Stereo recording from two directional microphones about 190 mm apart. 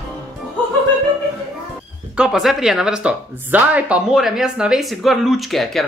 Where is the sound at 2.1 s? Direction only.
5° right (ahead or behind).